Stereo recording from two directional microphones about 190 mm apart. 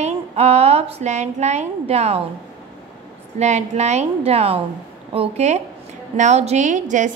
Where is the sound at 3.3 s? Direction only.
35° right (ahead or behind).